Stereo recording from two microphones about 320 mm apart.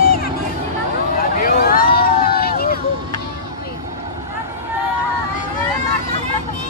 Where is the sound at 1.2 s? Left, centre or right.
Left.